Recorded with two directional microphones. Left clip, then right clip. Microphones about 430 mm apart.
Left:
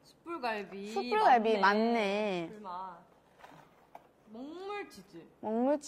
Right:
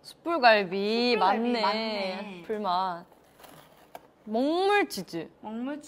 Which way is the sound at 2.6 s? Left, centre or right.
Right.